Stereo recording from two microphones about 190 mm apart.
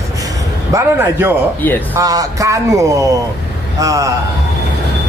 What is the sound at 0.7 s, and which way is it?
Speech, 10° right (ahead or behind).